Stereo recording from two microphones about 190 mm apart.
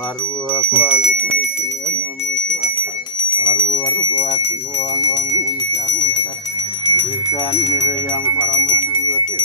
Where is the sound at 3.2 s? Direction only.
25° left (ahead or behind).